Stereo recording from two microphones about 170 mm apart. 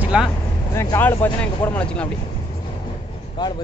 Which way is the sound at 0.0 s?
5° right (ahead or behind).